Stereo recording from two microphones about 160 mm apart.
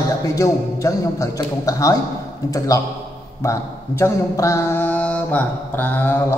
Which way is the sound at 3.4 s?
20° left (ahead or behind).